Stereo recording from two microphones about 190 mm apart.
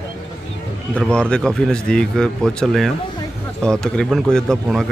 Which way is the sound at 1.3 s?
5° left (ahead or behind).